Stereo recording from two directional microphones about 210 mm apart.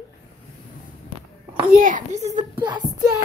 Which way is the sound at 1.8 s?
40° right (ahead or behind).